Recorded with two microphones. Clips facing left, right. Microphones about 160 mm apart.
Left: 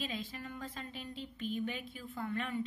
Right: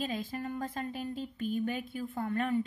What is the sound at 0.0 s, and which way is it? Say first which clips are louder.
A woman's voice: right 6 dB; 45° right (ahead or behind).